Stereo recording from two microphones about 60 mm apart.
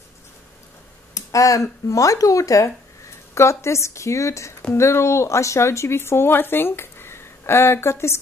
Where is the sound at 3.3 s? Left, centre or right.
Left.